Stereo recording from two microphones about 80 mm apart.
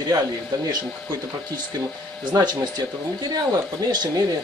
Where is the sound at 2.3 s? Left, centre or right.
Right.